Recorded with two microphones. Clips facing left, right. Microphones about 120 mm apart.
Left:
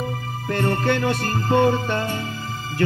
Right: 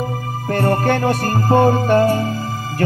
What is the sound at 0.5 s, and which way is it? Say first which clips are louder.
Music: right 4 dB; 40° right (ahead or behind).